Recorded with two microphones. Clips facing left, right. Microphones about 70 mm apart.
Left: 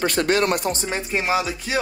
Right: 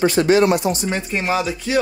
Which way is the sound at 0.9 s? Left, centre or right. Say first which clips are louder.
Right 2 dB; centre.